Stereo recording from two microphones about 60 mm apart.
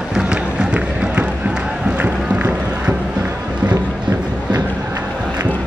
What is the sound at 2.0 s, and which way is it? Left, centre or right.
Music, right.